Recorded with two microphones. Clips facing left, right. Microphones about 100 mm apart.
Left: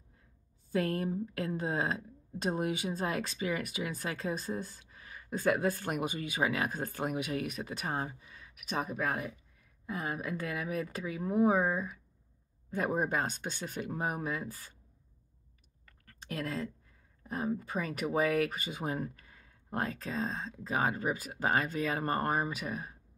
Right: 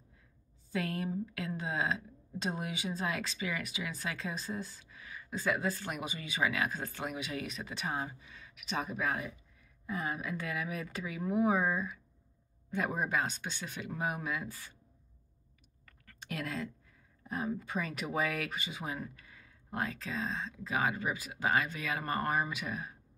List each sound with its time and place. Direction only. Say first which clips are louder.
0.7 s a woman's voice: left 4 dB; 45° left (ahead or behind)
16.1 s speech: left 2 dB; 35° left (ahead or behind)